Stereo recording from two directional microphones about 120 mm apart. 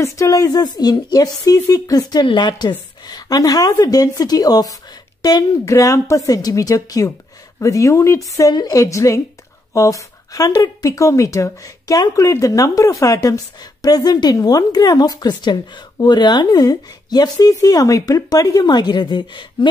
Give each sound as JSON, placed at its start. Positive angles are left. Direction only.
{"t": 0.0, "sound": "speech", "side_deg": 30}